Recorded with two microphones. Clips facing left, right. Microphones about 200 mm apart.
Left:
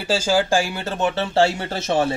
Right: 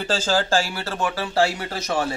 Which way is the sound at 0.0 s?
10° left (ahead or behind).